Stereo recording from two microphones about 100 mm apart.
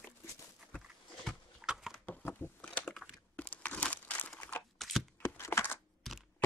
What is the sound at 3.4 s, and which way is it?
Crumpling, 15° left (ahead or behind).